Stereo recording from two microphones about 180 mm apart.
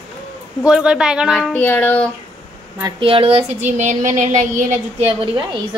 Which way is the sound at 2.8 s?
30° right (ahead or behind).